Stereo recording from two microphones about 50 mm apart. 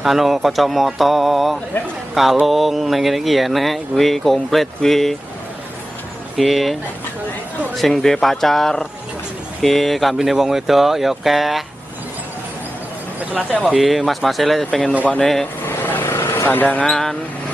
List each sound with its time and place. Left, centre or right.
0.0 s speech: centre
6.3 s speech: centre
13.2 s speech: right
13.7 s speech: centre
15.6 s vehicle: left
16.4 s speech: left
16.9 s speech: centre